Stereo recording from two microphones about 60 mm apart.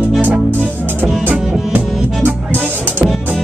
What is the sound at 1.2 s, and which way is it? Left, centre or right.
Music, right.